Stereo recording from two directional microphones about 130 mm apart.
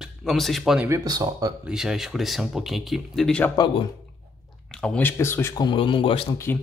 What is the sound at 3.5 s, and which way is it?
Speech, 35° left (ahead or behind).